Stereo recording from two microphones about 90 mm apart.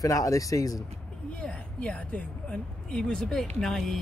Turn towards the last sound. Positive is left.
turn(degrees=5)  # may be behind; listen again after turning